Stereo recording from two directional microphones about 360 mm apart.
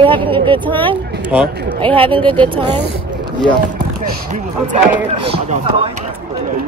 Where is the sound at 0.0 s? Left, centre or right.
Centre.